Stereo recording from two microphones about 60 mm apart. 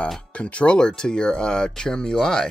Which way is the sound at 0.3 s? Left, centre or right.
Left.